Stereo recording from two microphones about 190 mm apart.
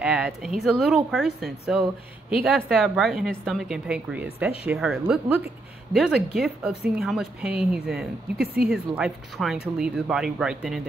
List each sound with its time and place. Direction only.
0.0 s a woman's voice: 5° right (ahead or behind)